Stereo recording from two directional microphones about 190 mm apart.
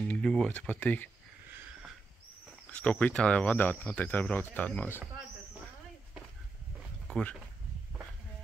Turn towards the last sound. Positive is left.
turn(degrees=5)  # may be behind; listen again after turning